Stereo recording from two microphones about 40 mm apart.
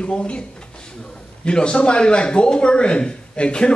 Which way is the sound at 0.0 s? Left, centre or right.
Left.